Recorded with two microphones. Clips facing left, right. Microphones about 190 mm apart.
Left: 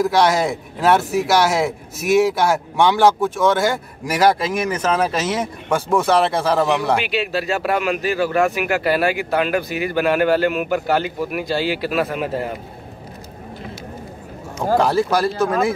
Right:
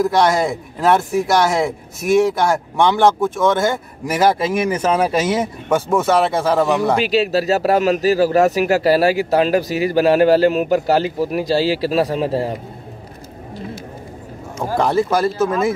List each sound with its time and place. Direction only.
0.0 s speech: centre (ahead or behind)
7.0 s a man's voice: 35° right (ahead or behind)
14.8 s speech: centre (ahead or behind)